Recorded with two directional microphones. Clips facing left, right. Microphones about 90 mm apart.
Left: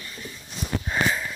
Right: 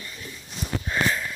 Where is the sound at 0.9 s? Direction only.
10° left (ahead or behind).